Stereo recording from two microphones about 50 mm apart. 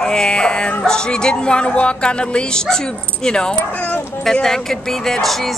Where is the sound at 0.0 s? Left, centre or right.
Centre.